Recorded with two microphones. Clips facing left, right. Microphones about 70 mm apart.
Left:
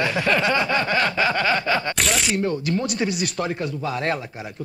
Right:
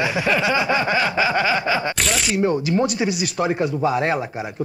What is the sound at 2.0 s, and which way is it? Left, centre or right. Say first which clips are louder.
Zipper: even; centre.